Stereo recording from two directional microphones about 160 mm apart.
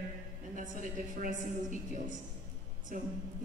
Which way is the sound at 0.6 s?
55° right (ahead or behind).